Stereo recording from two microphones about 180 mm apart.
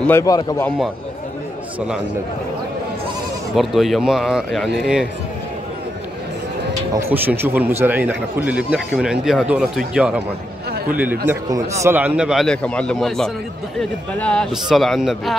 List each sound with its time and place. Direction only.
0.0 s a man's voice: 15° left (ahead or behind)
3.5 s speech: centre (ahead or behind)
7.0 s speech: 10° right (ahead or behind)